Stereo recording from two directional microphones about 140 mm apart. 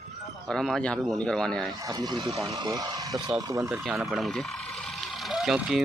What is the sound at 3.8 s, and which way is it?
Speech, centre (ahead or behind).